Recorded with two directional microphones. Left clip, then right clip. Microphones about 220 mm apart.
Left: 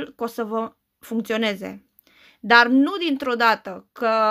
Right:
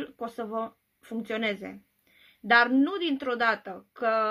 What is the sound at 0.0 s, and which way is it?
Speech, 45° left (ahead or behind).